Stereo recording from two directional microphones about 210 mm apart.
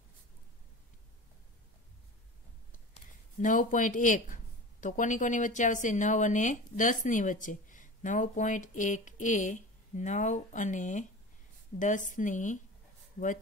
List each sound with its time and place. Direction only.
2.9 s a woman's voice: 35° left (ahead or behind)